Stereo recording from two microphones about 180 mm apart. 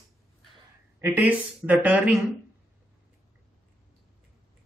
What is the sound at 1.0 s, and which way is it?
Speech, 10° right (ahead or behind).